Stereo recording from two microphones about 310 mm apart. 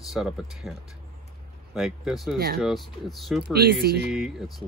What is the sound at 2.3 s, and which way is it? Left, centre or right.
Speech, right.